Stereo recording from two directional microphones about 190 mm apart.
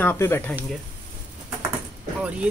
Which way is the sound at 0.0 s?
10° left (ahead or behind).